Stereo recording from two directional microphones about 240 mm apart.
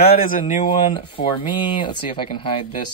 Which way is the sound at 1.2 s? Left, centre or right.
Left.